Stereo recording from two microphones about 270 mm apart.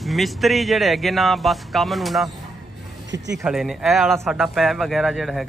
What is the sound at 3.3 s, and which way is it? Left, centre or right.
Speech, centre.